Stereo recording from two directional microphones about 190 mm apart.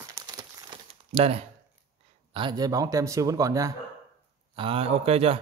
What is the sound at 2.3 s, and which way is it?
Speech, 25° right (ahead or behind).